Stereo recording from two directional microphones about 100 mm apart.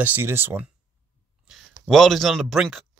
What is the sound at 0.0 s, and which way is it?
Speech, 20° right (ahead or behind).